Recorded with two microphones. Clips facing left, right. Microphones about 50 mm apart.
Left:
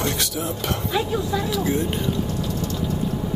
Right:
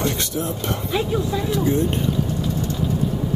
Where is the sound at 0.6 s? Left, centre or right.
Centre.